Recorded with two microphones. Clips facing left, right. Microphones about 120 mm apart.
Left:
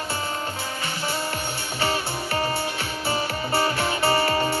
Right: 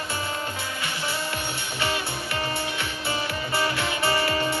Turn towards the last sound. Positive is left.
turn(degrees=35)  # may be behind; listen again after turning